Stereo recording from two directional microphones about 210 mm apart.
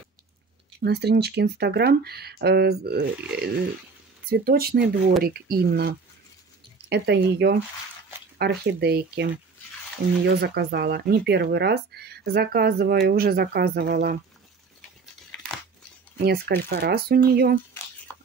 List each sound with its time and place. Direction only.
0.7 s speech: 50° right (ahead or behind)
16.3 s speech: 45° right (ahead or behind)